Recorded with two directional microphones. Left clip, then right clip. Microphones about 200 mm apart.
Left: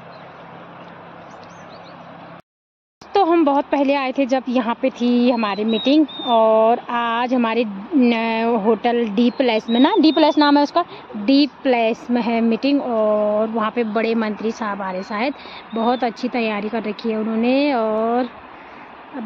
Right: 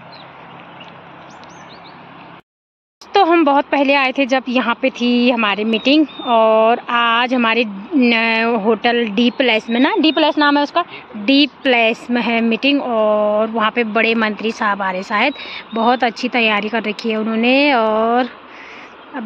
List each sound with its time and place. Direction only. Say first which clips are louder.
3.1 s speech: right 3 dB; centre (ahead or behind); by 10.9 s 20° left (ahead or behind)
11.2 s speech: right 3 dB; 5° left (ahead or behind)